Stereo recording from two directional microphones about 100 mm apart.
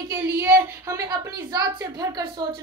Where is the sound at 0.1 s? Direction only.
25° right (ahead or behind).